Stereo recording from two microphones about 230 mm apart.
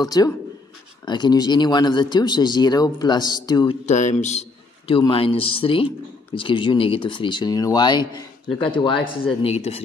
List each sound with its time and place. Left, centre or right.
0.0 s speech: centre
3.8 s a man's voice: left